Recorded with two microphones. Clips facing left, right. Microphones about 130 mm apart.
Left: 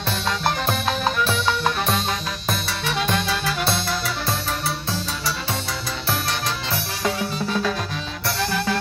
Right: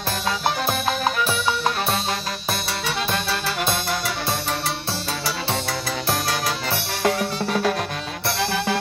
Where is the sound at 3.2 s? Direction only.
30° right (ahead or behind).